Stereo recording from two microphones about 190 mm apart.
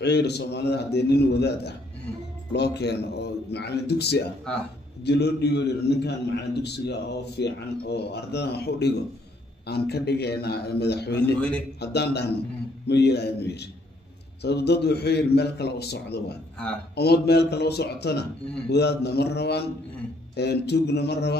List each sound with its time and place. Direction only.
0.0 s a man's voice: 60° left (ahead or behind)